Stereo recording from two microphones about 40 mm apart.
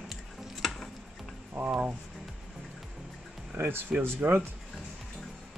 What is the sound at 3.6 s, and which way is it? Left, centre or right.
Speech, right.